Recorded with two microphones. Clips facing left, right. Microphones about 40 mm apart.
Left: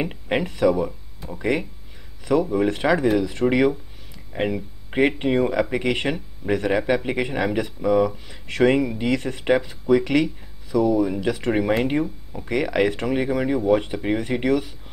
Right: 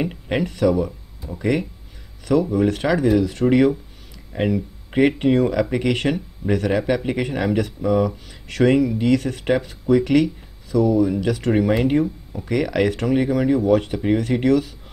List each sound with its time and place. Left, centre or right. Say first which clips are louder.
0.0 s speech: right 1 dB; centre
8.5 s speech: right 2 dB; left
11.5 s speech: right 4 dB; centre